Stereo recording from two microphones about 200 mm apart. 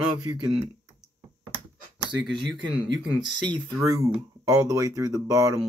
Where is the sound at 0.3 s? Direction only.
20° right (ahead or behind).